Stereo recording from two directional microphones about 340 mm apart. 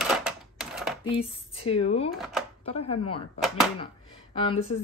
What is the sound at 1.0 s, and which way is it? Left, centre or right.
Speech, centre.